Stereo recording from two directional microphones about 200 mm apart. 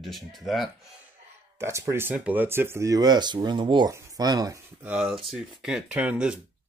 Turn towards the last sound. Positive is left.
turn(degrees=-5)  # may be behind; listen again after turning